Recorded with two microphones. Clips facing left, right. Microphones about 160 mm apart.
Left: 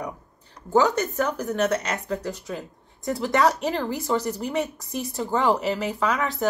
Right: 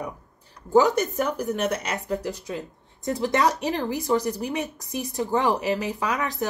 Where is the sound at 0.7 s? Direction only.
15° right (ahead or behind).